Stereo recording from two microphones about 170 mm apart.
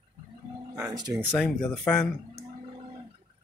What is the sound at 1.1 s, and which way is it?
Speech, 5° right (ahead or behind).